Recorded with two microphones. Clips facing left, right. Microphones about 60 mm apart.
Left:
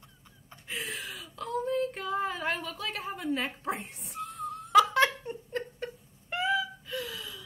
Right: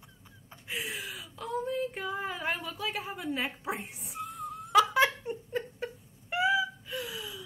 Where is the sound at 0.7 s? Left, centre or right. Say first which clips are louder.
Even; centre.